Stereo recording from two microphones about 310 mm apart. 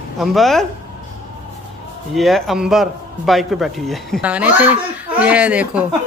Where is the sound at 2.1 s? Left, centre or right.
Centre.